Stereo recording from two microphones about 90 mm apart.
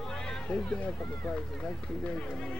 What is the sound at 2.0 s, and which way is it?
Speech, 10° left (ahead or behind).